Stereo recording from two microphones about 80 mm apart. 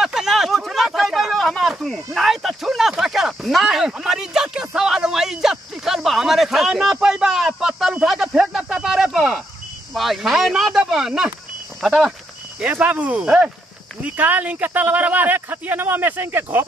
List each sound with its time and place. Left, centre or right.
0.0 s a sound: centre
9.9 s speech: centre
12.5 s speech: centre